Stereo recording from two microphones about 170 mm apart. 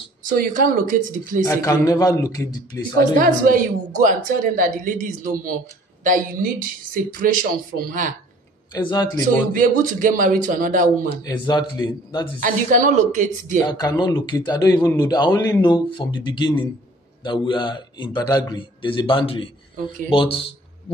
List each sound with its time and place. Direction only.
0.3 s a man's voice: 50° right (ahead or behind)
1.4 s a man's voice: 20° left (ahead or behind)
3.2 s a woman's voice: 55° right (ahead or behind)
8.7 s a man's voice: 20° left (ahead or behind)
9.5 s a man's voice: 50° right (ahead or behind)
11.2 s a man's voice: 20° left (ahead or behind)
12.4 s a man's voice: 50° right (ahead or behind)
13.6 s a man's voice: 20° left (ahead or behind)